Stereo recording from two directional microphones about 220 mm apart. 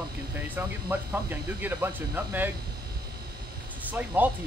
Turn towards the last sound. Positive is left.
turn(degrees=-5)  # may be behind; listen again after turning